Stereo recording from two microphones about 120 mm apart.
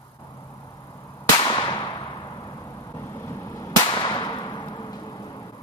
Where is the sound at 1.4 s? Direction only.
40° left (ahead or behind).